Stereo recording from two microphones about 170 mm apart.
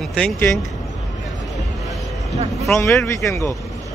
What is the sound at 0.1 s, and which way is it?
Speech, 5° left (ahead or behind).